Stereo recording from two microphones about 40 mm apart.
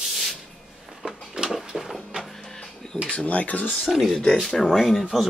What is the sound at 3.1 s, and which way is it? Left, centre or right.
Speech, left.